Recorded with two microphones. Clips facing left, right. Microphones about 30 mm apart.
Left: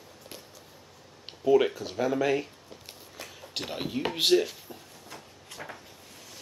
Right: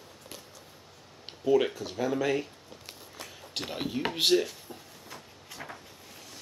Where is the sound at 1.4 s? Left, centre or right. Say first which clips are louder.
Left 2 dB; centre.